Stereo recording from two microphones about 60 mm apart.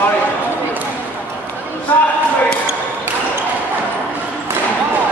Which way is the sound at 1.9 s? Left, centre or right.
Left.